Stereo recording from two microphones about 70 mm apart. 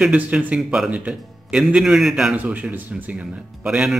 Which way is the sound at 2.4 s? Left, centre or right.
Right.